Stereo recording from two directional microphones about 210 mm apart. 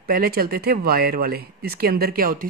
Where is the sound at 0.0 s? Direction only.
45° right (ahead or behind).